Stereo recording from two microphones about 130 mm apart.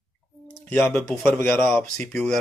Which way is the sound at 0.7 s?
10° left (ahead or behind).